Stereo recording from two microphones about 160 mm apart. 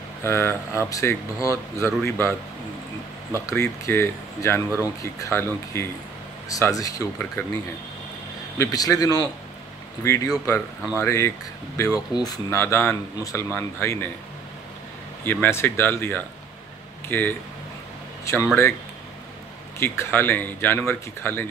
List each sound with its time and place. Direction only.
0.2 s speech: 15° left (ahead or behind)
3.3 s a man's voice: 20° left (ahead or behind)
8.5 s a man's voice: 20° left (ahead or behind)
15.2 s speech: 10° left (ahead or behind)
19.8 s speech: 15° left (ahead or behind)